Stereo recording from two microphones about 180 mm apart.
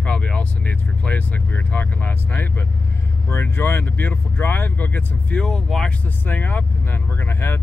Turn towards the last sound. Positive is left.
turn(degrees=10)  # may be behind; listen again after turning